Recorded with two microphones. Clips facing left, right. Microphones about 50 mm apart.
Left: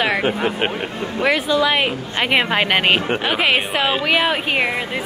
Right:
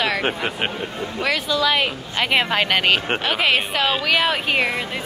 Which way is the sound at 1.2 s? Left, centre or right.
Left.